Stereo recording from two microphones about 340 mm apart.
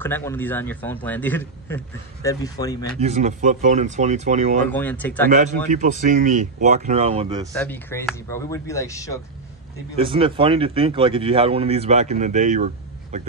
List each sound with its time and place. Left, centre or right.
0.0 s a man's voice: centre
3.0 s speech: centre
4.6 s a man's voice: centre
5.7 s speech: right
7.5 s speech: centre
9.9 s speech: centre